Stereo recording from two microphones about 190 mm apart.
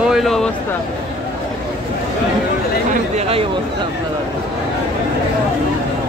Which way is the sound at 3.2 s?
30° right (ahead or behind).